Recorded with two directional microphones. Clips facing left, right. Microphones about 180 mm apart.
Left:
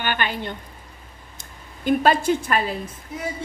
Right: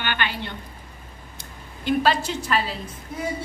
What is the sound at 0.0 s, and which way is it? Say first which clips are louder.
A woman's voice: left 2 dB; 45° left (ahead or behind).